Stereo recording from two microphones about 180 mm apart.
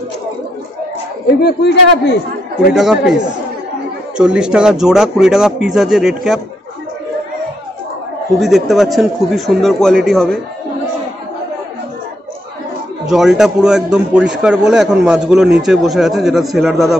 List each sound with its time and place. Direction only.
1.2 s a man's voice: 65° left (ahead or behind)
2.7 s a man's voice: 5° right (ahead or behind)
4.2 s a man's voice: 5° right (ahead or behind)
8.4 s a man's voice: centre (ahead or behind)
13.1 s a man's voice: centre (ahead or behind)